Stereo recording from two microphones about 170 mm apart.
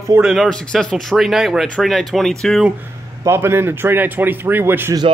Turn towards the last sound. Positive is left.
turn(degrees=-15)  # may be behind; listen again after turning